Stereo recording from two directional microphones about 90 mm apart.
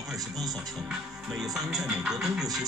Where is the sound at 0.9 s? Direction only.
5° right (ahead or behind).